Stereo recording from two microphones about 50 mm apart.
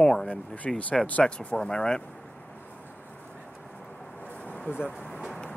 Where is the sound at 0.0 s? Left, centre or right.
Centre.